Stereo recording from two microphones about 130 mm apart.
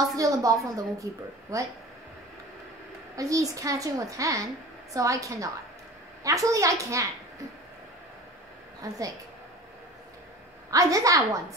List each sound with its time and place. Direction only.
0.0 s a child's voice: 25° right (ahead or behind)
3.2 s a child's voice: 25° right (ahead or behind)
8.8 s a child's voice: 25° right (ahead or behind)
10.7 s a child's voice: 25° right (ahead or behind)